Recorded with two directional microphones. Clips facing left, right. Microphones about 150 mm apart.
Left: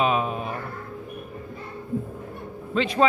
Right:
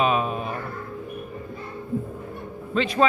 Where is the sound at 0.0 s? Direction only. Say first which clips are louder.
Right 1 dB; 15° left (ahead or behind).